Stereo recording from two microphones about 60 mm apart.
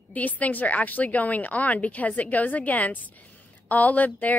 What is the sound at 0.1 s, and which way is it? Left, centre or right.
A woman's voice, left.